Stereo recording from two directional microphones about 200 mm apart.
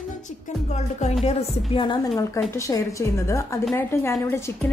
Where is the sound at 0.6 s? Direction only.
35° left (ahead or behind).